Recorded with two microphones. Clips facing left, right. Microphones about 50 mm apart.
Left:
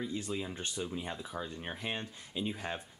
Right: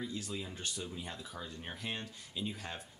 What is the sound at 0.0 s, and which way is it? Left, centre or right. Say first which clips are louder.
Speech: left 4 dB; left.